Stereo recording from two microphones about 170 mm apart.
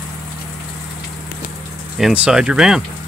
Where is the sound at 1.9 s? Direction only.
5° right (ahead or behind).